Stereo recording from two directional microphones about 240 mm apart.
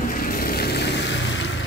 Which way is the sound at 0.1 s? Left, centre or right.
Left.